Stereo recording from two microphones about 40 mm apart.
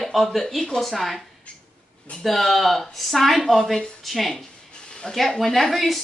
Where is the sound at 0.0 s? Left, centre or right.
Centre.